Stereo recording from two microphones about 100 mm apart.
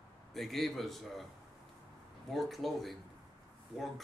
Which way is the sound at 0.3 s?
Centre (ahead or behind).